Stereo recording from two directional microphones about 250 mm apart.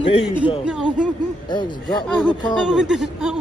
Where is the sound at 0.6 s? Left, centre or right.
Centre.